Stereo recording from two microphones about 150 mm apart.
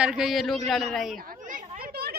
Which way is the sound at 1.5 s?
90° right.